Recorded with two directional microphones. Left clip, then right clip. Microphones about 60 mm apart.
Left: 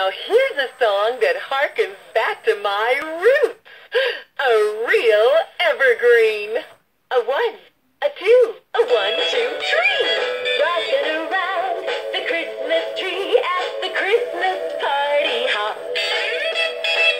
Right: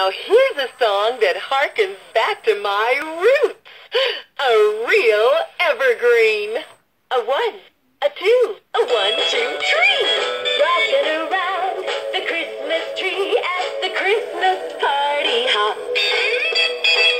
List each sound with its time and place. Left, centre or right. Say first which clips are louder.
0.0 s speech: right 2 dB; centre
8.0 s music: left 1 dB; centre